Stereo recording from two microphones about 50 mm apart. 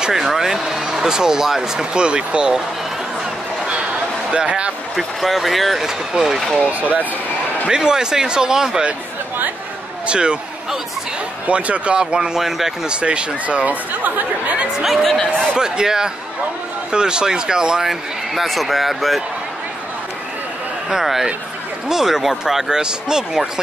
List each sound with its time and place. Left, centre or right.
0.0 s speech: centre
3.6 s a sound: right
4.9 s speech: centre
6.8 s speech: right
7.6 s speech: centre
10.0 s speech: right
11.4 s speech: right
12.4 s speech: centre
12.9 s speech: right
14.8 s speech: centre
15.5 s speech: centre
18.3 s speech: centre
20.9 s speech: centre